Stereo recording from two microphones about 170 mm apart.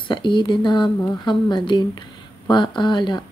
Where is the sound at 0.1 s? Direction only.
25° left (ahead or behind).